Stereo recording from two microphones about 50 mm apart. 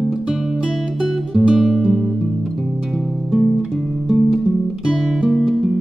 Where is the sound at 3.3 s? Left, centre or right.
Centre.